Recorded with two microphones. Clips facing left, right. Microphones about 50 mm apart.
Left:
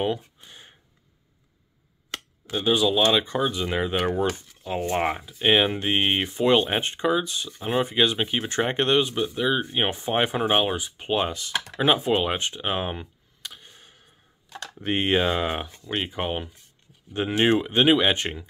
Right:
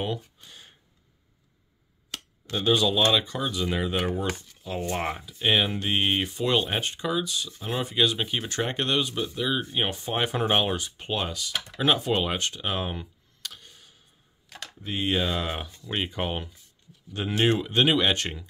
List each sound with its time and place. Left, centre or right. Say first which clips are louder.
0.4 s a sound: left 2 dB; centre
2.4 s speech: left 1 dB; centre
3.0 s speech: left 3 dB; left
10.4 s speech: left 2 dB; centre
14.8 s speech: left 6 dB; left
15.0 s speech: left 3 dB; left
16.1 s speech: left 2 dB; centre